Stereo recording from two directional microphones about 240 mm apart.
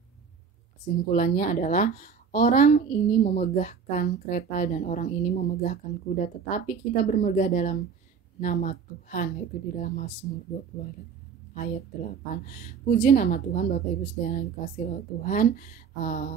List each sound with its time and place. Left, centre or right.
1.1 s a woman's voice: left